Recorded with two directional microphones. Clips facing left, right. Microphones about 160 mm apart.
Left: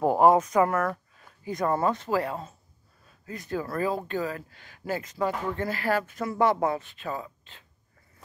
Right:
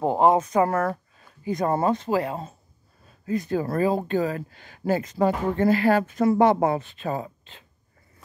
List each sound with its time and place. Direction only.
0.0 s speech: 25° right (ahead or behind)
1.4 s speech: 20° right (ahead or behind)